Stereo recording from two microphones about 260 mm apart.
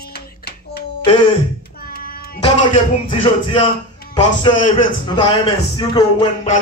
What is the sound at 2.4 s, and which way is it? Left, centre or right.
A man's voice, left.